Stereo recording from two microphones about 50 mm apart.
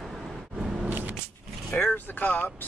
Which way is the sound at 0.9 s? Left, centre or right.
Right.